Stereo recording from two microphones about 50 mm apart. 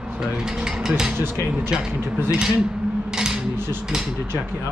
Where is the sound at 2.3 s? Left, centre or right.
Centre.